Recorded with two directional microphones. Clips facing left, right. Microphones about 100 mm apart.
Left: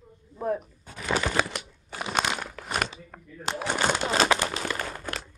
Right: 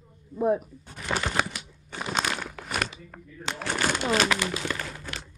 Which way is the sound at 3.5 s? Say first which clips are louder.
Left 2 dB; 20° left (ahead or behind).